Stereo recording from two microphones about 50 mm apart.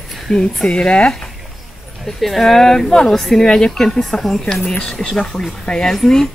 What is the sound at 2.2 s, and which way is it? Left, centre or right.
Speech, centre.